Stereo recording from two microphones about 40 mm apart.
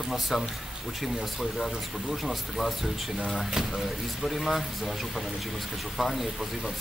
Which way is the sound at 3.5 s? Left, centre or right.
Centre.